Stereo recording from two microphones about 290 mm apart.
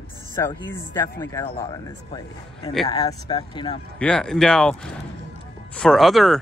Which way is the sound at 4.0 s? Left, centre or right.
Centre.